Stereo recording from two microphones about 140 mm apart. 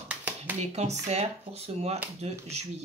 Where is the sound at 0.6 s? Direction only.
50° right (ahead or behind).